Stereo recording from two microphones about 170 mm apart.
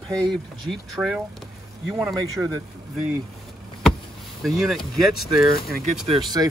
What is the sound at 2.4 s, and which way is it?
Speech, 10° right (ahead or behind).